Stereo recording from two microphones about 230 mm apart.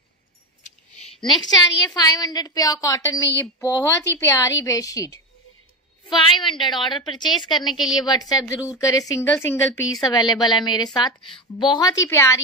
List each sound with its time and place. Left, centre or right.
0.7 s a sound: left
2.0 s speech: centre
6.3 s a woman's voice: left
7.6 s a woman's voice: centre
7.9 s speech: centre